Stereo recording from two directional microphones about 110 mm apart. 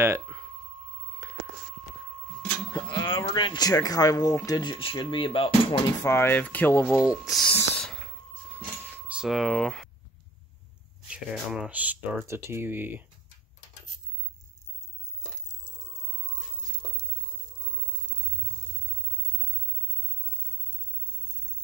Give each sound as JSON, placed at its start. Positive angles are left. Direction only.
{"t": 0.0, "sound": "a sound", "side_deg": -25}
{"t": 2.7, "sound": "speech", "side_deg": 40}
{"t": 6.0, "sound": "speech", "side_deg": 20}
{"t": 6.9, "sound": "speech", "side_deg": 0}
{"t": 8.5, "sound": "a sound", "side_deg": -15}
{"t": 11.1, "sound": "speech", "side_deg": -10}